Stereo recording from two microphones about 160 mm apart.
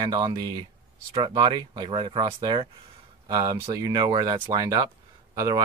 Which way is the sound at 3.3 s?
20° right (ahead or behind).